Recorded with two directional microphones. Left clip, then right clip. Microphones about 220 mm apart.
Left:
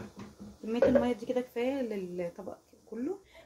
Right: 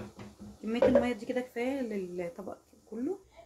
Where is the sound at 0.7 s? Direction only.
5° left (ahead or behind).